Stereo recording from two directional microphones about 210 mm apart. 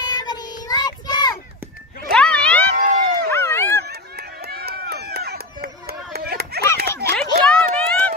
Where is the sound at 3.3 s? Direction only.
10° left (ahead or behind).